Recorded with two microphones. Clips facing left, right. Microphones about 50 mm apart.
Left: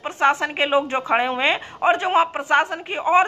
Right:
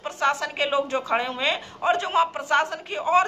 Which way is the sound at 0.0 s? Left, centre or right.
Left.